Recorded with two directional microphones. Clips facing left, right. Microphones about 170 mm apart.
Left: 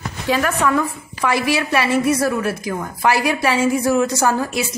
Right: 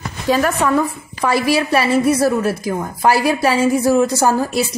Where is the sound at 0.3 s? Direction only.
35° right (ahead or behind).